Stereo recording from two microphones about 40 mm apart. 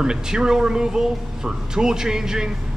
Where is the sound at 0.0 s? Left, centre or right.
Centre.